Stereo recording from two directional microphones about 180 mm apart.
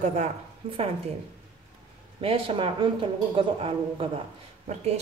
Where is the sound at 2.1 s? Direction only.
30° right (ahead or behind).